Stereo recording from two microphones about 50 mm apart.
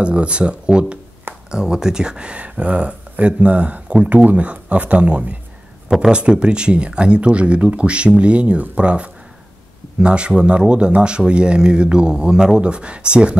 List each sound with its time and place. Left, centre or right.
0.0 s speech: right
5.9 s speech: centre